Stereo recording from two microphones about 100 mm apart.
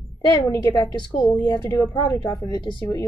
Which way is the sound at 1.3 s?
35° left (ahead or behind).